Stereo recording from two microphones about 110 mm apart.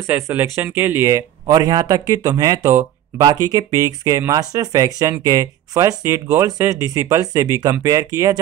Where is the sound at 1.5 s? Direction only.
35° right (ahead or behind).